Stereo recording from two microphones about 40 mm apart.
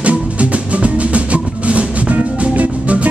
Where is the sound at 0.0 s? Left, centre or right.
Right.